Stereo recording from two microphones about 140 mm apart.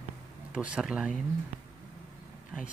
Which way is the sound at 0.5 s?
10° right (ahead or behind).